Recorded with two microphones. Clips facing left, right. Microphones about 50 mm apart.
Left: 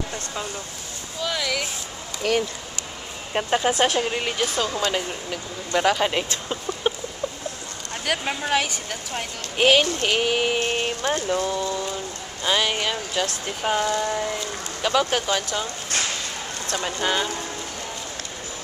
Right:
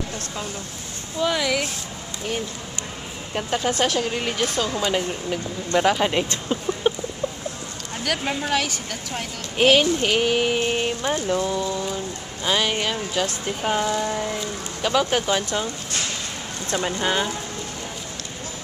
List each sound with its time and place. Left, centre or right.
1.2 s speech: centre
2.2 s speech: left
3.3 s speech: centre
4.8 s speech: centre
8.0 s speech: centre
16.7 s speech: centre